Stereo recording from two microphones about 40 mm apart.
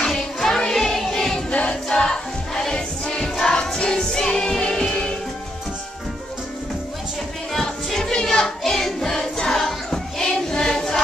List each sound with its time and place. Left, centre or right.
0.0 s music: centre
1.5 s music: left
7.5 s child singing: centre
9.0 s choir: centre
10.5 s music: centre